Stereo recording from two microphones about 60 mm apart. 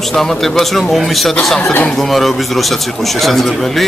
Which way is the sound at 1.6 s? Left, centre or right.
Left.